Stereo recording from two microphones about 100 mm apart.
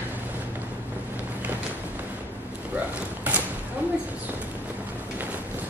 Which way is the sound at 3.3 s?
15° right (ahead or behind).